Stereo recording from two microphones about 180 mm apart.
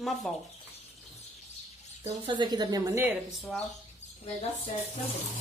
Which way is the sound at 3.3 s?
Centre (ahead or behind).